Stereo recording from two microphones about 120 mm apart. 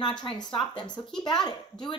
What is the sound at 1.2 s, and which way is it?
Speech, 40° left (ahead or behind).